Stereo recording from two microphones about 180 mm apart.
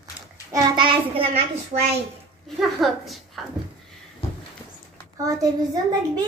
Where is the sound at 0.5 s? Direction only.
25° right (ahead or behind).